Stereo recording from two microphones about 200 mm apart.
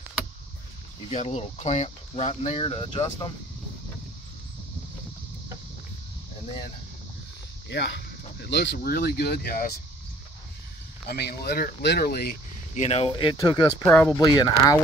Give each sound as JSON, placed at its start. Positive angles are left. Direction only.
{"t": 1.1, "sound": "speech", "side_deg": 30}
{"t": 7.7, "sound": "speech", "side_deg": 65}
{"t": 11.1, "sound": "speech", "side_deg": 55}
{"t": 12.8, "sound": "speech", "side_deg": 30}
{"t": 13.8, "sound": "speech", "side_deg": 10}
{"t": 14.2, "sound": "speech", "side_deg": 20}